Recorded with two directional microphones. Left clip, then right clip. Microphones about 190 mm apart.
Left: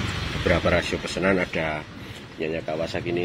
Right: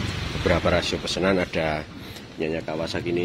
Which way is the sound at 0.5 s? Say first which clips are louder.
Even; 10° right (ahead or behind).